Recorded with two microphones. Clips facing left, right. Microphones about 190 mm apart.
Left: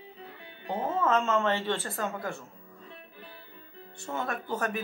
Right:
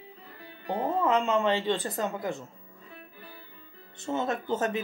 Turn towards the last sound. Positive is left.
turn(degrees=-20)  # may be behind; listen again after turning